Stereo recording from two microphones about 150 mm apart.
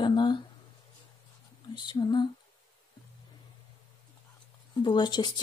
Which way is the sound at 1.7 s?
30° left (ahead or behind).